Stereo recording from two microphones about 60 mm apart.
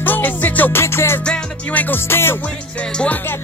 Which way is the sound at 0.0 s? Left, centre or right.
Left.